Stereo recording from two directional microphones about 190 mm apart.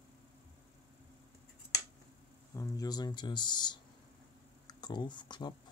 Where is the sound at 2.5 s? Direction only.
20° left (ahead or behind).